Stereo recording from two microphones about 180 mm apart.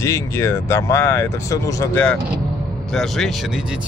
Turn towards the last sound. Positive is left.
turn(degrees=0)  # may be behind; listen again after turning